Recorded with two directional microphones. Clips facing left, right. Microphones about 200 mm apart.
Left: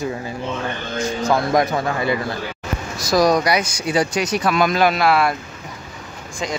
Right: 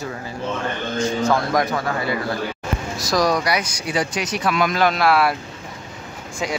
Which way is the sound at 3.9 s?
40° left (ahead or behind).